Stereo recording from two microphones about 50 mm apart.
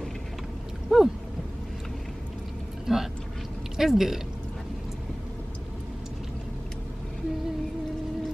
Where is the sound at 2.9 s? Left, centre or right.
Centre.